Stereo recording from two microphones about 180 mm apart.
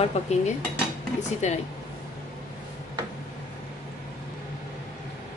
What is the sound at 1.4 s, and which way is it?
Speech, 40° left (ahead or behind).